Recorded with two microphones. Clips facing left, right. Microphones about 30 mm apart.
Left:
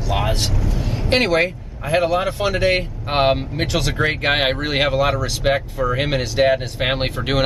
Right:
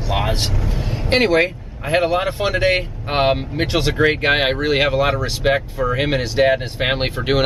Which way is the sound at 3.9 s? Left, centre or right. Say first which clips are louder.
Right 3 dB; centre.